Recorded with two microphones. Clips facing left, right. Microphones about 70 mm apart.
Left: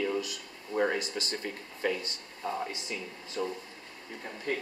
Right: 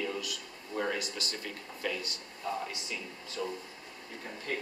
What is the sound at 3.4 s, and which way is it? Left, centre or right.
Speech, left.